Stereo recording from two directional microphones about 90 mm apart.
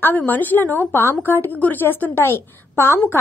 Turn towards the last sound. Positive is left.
turn(degrees=25)  # may be behind; listen again after turning